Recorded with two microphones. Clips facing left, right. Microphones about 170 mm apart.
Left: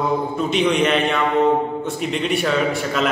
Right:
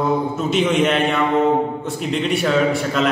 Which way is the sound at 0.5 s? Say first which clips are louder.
Right 1 dB; centre (ahead or behind).